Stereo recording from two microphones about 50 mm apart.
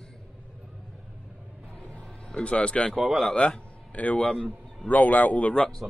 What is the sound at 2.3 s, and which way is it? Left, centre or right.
Speech, left.